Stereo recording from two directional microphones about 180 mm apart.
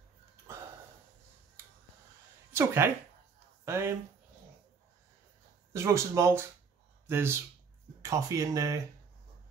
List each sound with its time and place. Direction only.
2.5 s speech: 15° right (ahead or behind)
5.7 s speech: 15° right (ahead or behind)